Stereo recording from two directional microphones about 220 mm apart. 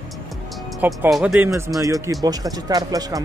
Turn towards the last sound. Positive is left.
turn(degrees=-15)  # may be behind; listen again after turning